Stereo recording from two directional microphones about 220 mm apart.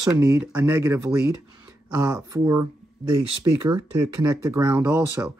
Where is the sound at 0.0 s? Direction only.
15° right (ahead or behind).